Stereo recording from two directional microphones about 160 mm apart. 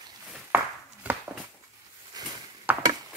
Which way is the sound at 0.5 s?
10° right (ahead or behind).